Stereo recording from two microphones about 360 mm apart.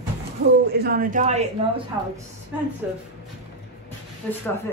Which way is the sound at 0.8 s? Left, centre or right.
Right.